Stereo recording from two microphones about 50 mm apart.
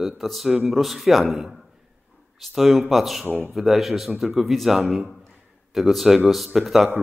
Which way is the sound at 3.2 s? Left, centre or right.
Right.